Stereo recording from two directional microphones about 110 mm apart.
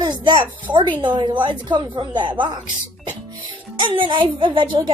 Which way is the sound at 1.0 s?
45° right (ahead or behind).